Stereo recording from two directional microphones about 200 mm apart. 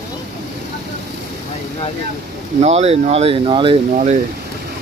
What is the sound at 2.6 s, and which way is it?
Speech, 30° right (ahead or behind).